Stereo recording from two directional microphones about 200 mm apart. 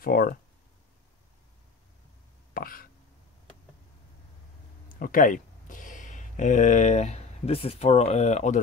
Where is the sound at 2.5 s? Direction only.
45° left (ahead or behind).